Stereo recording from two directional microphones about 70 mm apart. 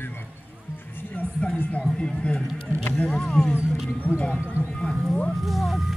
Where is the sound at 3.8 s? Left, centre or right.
Left.